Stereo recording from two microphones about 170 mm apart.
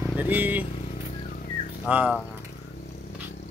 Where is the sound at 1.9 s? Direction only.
5° right (ahead or behind).